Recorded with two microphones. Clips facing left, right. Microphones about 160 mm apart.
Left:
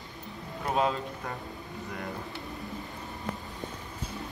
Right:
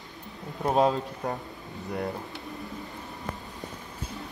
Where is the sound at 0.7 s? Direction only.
40° right (ahead or behind).